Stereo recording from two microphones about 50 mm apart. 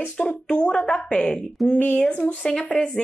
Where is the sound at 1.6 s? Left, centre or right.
Centre.